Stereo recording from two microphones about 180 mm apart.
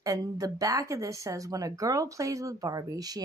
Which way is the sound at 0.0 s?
20° right (ahead or behind).